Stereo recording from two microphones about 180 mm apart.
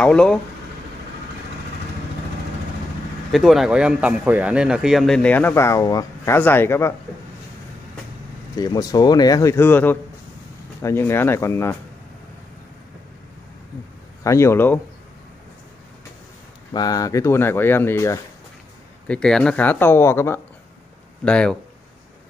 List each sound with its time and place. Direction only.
0.0 s a man's voice: 5° left (ahead or behind)
3.3 s a man's voice: centre (ahead or behind)
8.5 s speech: 20° left (ahead or behind)
14.2 s speech: 15° left (ahead or behind)
16.7 s speech: 20° left (ahead or behind)
19.0 s a man's voice: 5° left (ahead or behind)